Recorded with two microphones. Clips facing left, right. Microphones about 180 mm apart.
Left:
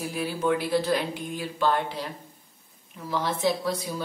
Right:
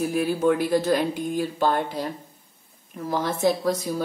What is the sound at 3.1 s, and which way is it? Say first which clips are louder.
Speech: right 3 dB; 45° right (ahead or behind).